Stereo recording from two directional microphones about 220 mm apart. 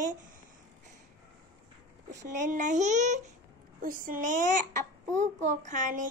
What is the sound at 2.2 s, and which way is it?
A child's voice, 35° right (ahead or behind).